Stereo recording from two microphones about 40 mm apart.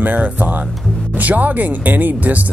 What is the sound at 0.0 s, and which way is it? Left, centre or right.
Speech, right.